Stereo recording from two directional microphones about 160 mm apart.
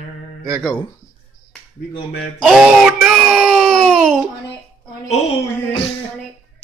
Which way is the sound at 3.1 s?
Centre (ahead or behind).